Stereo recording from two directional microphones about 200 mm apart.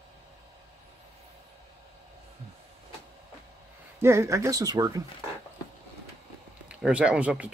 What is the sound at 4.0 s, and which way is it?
Speech, 15° right (ahead or behind).